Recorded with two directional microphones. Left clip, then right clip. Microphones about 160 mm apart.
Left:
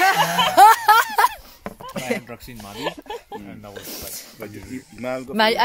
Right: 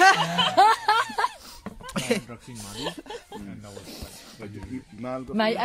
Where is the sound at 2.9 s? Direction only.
90° left.